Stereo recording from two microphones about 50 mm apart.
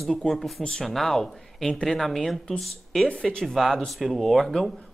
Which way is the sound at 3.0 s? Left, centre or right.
Centre.